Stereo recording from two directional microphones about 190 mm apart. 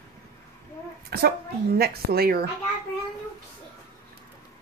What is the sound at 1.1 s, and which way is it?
Speech, 55° right (ahead or behind).